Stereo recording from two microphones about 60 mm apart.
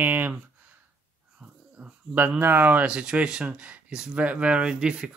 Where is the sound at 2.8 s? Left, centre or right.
Centre.